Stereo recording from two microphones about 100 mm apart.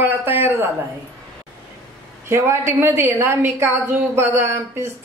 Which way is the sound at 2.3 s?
25° right (ahead or behind).